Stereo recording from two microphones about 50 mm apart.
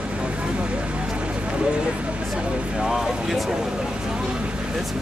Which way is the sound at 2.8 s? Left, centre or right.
Centre.